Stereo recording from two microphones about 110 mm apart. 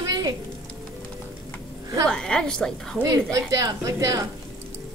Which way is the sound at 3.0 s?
30° right (ahead or behind).